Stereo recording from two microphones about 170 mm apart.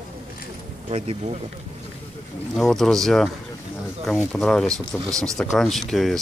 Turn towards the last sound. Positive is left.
turn(degrees=0)  # may be behind; listen again after turning